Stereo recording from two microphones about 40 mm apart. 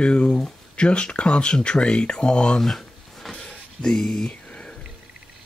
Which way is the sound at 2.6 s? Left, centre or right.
Centre.